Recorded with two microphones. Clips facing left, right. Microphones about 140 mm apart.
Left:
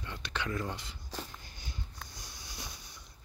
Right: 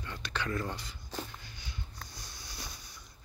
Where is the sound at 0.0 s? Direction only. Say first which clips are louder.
Right 1 dB; 20° left (ahead or behind).